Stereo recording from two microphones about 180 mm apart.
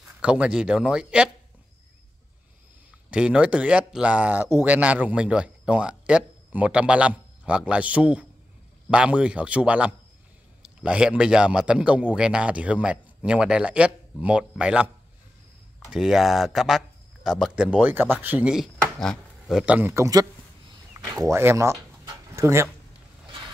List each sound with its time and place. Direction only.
0.2 s speech: 5° right (ahead or behind)
3.1 s speech: 5° right (ahead or behind)
15.9 s speech: centre (ahead or behind); by 20.2 s 20° right (ahead or behind)
21.0 s a sound: 20° right (ahead or behind)